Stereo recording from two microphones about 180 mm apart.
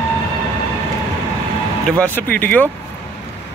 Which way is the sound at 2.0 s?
10° left (ahead or behind).